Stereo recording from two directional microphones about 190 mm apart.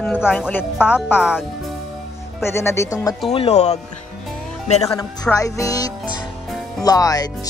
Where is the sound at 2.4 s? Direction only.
15° left (ahead or behind).